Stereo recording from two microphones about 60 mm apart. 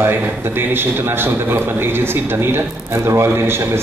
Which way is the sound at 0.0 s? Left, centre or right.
Right.